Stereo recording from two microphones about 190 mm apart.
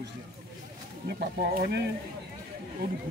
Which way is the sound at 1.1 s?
55° right (ahead or behind).